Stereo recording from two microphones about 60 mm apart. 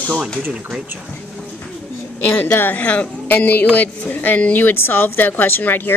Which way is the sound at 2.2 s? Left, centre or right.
Left.